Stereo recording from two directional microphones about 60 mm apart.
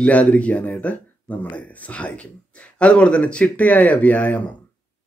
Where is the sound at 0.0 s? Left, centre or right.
Left.